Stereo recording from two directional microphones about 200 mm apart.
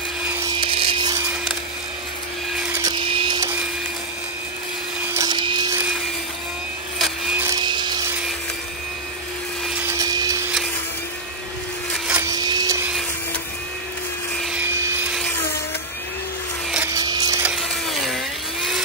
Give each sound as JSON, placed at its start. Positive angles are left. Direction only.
{"t": 0.2, "sound": "vacuum cleaner", "side_deg": -10}
{"t": 0.5, "sound": "wood", "side_deg": -25}
{"t": 2.6, "sound": "vacuum cleaner", "side_deg": -10}
{"t": 2.9, "sound": "printer", "side_deg": -25}
{"t": 5.1, "sound": "vacuum cleaner", "side_deg": -20}
{"t": 7.0, "sound": "a sound", "side_deg": -5}
{"t": 7.4, "sound": "a sound", "side_deg": -20}
{"t": 9.8, "sound": "vacuum cleaner", "side_deg": -15}
{"t": 12.1, "sound": "vacuum cleaner", "side_deg": -15}
{"t": 14.4, "sound": "helicopter", "side_deg": -5}
{"t": 16.9, "sound": "a sound", "side_deg": -20}
{"t": 17.5, "sound": "a sound", "side_deg": 0}